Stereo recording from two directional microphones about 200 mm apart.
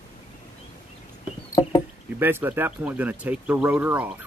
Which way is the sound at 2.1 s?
10° right (ahead or behind).